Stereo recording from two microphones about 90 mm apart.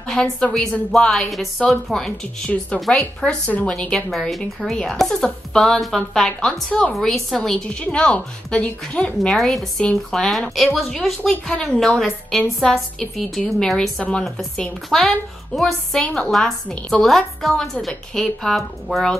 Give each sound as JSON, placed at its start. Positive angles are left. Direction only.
{"t": 0.0, "sound": "a woman's voice", "side_deg": 10}